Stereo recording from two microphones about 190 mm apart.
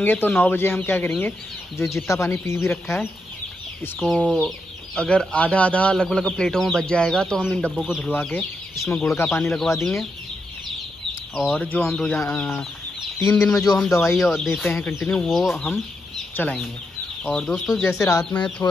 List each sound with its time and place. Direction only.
0.0 s speech: 10° left (ahead or behind)
11.3 s speech: 5° left (ahead or behind)
13.2 s speech: 15° left (ahead or behind)
14.1 s speech: centre (ahead or behind)